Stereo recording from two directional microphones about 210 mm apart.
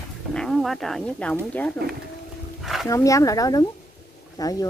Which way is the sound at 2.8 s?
15° left (ahead or behind).